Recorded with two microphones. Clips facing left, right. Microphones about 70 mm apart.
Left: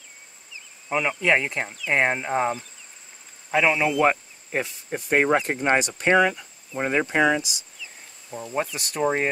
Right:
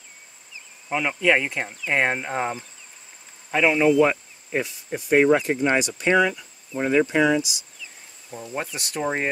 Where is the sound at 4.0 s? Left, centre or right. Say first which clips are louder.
Right 1 dB; left.